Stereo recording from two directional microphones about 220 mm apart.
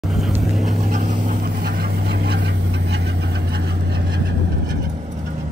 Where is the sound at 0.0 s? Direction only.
Centre (ahead or behind).